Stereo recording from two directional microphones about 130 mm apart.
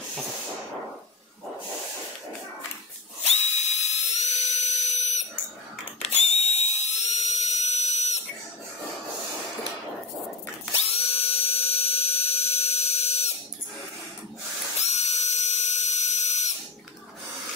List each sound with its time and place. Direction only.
3.3 s a sound: 60° left (ahead or behind)
6.0 s dental drill: 55° left (ahead or behind)
10.9 s dental drill: 50° left (ahead or behind)
14.8 s dental drill: 60° left (ahead or behind)